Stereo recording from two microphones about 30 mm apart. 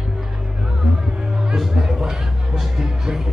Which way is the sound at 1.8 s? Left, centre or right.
Centre.